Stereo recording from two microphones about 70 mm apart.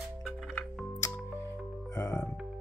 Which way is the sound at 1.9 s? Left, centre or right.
Left.